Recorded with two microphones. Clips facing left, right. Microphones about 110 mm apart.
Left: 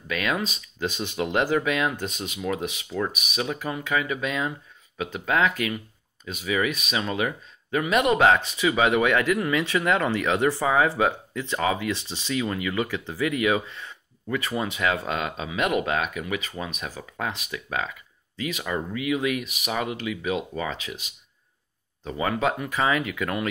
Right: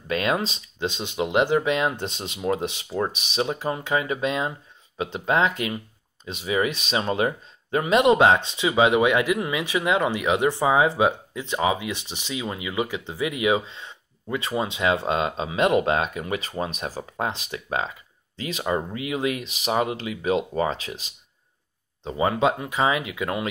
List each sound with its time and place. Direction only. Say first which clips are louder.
0.1 s speech: right 3 dB; 30° right (ahead or behind)
22.0 s speech: right 3 dB; 25° right (ahead or behind)